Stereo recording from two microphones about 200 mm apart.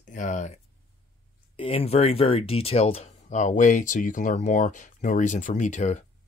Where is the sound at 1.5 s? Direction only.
30° left (ahead or behind).